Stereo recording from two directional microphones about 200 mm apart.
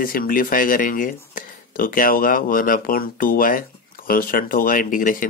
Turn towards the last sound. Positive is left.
turn(degrees=40)  # may be behind; listen again after turning